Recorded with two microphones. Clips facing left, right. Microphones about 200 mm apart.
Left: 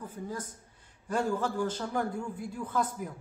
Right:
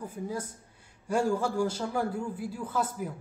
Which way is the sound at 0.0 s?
10° right (ahead or behind).